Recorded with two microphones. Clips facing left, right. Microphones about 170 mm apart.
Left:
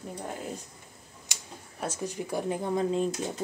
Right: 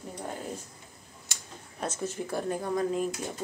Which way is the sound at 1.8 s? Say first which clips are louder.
Even; 15° left (ahead or behind).